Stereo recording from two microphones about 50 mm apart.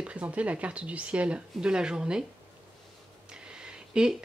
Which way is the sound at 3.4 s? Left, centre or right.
Centre.